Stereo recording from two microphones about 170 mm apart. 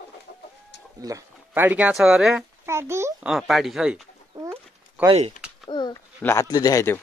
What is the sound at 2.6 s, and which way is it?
Speech, 15° right (ahead or behind).